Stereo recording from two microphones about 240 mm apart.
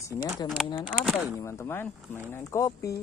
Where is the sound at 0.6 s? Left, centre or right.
Centre.